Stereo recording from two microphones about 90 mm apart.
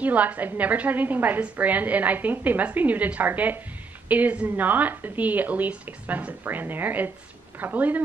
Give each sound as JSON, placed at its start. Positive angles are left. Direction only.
{"t": 0.0, "sound": "a woman's voice", "side_deg": -15}